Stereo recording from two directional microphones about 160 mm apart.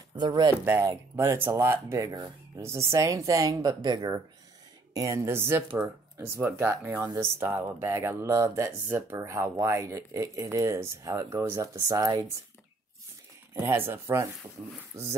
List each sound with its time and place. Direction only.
0.1 s speech: 25° right (ahead or behind)
0.7 s speech: 15° right (ahead or behind)
13.6 s speech: 15° right (ahead or behind)